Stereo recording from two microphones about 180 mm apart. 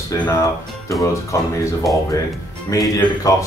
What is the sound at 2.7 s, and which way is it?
Speech, 20° left (ahead or behind).